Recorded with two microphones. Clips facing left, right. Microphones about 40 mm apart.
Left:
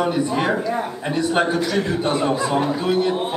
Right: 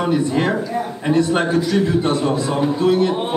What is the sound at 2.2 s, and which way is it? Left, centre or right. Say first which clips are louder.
Speech: right 1 dB; centre.